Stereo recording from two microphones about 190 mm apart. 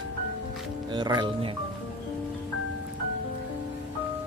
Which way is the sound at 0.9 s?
25° right (ahead or behind).